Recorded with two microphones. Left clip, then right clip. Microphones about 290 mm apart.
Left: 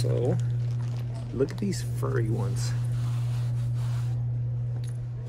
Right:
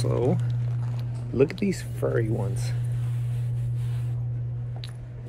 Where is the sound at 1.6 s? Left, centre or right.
Right.